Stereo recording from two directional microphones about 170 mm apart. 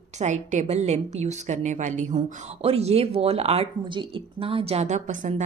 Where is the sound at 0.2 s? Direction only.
45° right (ahead or behind).